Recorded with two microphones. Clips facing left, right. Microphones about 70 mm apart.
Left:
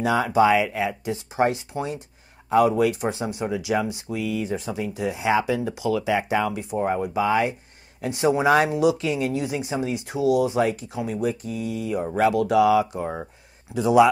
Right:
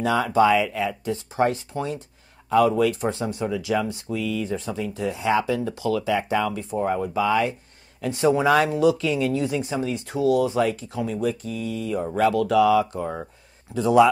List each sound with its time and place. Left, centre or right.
0.0 s speech: centre